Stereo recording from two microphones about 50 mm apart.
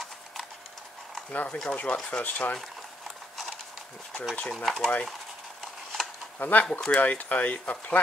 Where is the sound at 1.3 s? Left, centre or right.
Left.